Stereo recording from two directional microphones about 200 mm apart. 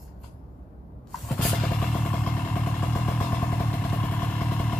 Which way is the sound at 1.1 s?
Centre (ahead or behind).